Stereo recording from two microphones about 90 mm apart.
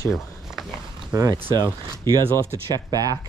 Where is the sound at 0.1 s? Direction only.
5° right (ahead or behind).